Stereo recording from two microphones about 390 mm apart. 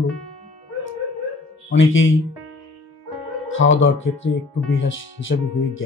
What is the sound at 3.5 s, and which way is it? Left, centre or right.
Speech, left.